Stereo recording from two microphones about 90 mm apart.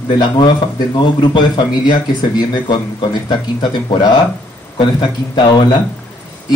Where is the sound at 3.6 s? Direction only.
55° left (ahead or behind).